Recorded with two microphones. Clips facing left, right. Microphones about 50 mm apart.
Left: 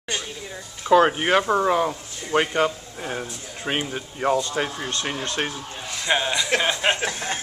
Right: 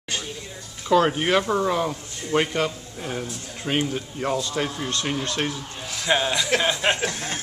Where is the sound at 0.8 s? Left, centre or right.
Centre.